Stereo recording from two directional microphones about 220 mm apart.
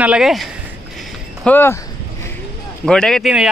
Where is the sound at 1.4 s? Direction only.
10° left (ahead or behind).